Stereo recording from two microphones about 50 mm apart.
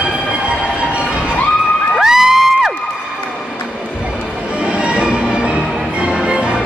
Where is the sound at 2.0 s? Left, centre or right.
Centre.